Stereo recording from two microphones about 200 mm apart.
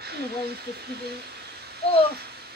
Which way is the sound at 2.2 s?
55° right (ahead or behind).